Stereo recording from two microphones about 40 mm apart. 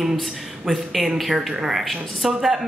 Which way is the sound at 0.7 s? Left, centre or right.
Centre.